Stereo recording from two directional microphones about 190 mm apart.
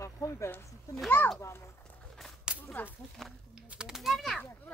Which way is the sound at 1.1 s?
10° left (ahead or behind).